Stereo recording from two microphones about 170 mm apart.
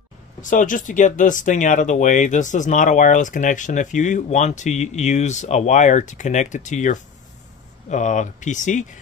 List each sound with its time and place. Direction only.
0.4 s speech: 50° left (ahead or behind)